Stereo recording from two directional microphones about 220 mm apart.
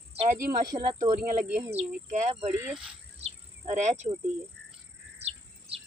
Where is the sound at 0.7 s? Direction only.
15° right (ahead or behind).